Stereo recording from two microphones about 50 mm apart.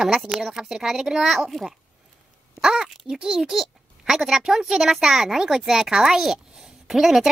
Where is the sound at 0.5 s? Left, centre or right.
Centre.